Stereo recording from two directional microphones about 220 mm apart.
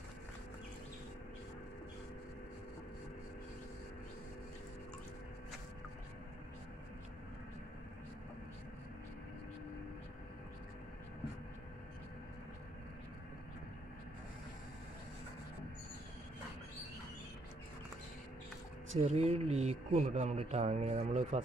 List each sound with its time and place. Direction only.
19.0 s speech: 30° right (ahead or behind)